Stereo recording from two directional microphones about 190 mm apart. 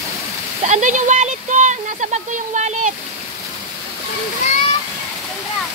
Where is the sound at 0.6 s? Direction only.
40° right (ahead or behind).